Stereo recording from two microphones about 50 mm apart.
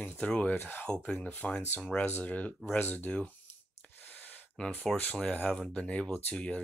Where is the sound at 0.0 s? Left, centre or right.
Left.